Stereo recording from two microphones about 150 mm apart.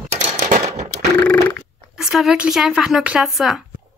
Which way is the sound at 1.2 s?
10° left (ahead or behind).